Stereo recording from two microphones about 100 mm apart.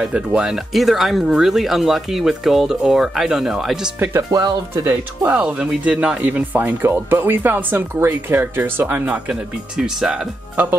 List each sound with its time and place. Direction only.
0.0 s speech: 10° right (ahead or behind)
4.3 s speech: 40° right (ahead or behind)
4.8 s speech: 15° right (ahead or behind)